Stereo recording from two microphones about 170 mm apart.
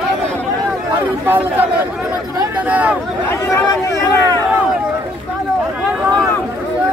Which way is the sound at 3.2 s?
15° left (ahead or behind).